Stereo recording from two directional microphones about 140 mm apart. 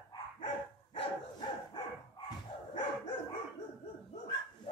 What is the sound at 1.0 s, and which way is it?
Dog, 35° left (ahead or behind).